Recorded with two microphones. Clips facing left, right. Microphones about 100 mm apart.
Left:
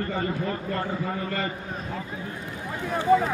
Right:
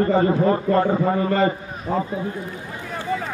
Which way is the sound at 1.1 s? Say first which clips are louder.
Right 10 dB; 35° right (ahead or behind).